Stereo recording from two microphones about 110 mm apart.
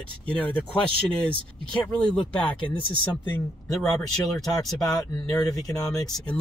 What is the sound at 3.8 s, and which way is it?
Speech, 5° left (ahead or behind).